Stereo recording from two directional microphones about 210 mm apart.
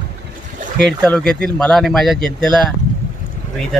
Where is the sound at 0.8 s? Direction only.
5° left (ahead or behind).